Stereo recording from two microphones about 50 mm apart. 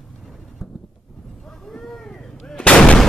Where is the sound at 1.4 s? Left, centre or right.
Centre.